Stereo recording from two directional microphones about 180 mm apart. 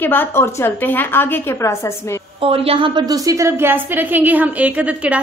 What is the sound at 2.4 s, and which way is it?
A woman's voice, 30° right (ahead or behind).